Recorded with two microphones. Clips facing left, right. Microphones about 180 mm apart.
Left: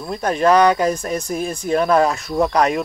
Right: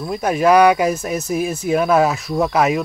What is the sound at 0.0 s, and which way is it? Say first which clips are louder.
Speech: right 1 dB; 5° right (ahead or behind).